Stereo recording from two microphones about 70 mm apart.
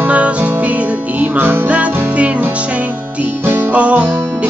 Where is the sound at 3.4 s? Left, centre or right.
Right.